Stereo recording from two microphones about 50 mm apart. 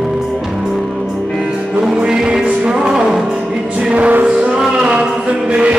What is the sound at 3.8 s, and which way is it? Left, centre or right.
Music, right.